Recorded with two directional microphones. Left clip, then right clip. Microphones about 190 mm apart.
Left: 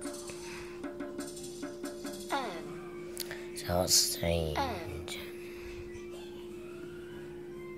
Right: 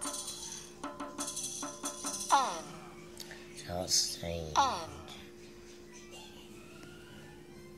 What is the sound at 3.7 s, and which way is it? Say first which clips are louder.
Speech: left 4 dB; 25° left (ahead or behind).